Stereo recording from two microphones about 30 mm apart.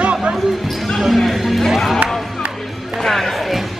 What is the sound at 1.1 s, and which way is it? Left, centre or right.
Speech, centre.